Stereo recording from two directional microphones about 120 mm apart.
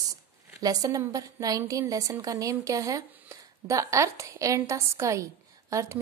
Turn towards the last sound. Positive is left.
turn(degrees=-25)  # may be behind; listen again after turning